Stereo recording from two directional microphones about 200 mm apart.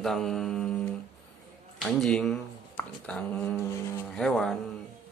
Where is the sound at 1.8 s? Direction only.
5° left (ahead or behind).